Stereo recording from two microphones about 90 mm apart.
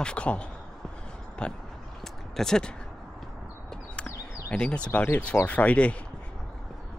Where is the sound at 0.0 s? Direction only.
10° left (ahead or behind).